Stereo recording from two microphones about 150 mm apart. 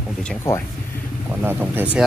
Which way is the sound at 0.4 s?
20° left (ahead or behind).